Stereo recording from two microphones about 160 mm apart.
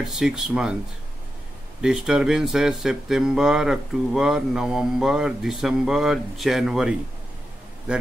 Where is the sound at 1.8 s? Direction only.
5° right (ahead or behind).